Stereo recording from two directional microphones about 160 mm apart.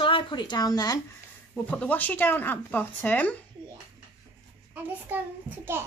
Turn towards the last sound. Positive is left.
turn(degrees=-10)  # may be behind; listen again after turning